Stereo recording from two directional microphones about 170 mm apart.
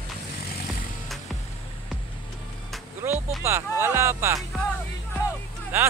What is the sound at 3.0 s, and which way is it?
Speech, 15° right (ahead or behind).